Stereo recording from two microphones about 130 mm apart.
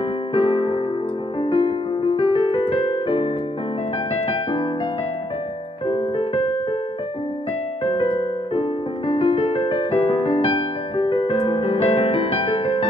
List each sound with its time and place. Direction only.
0.3 s electric piano: 45° left (ahead or behind)
1.4 s piano: 45° left (ahead or behind)
4.1 s keyboard: 45° left (ahead or behind)
5.9 s piano: 40° left (ahead or behind)
7.8 s piano: 40° left (ahead or behind)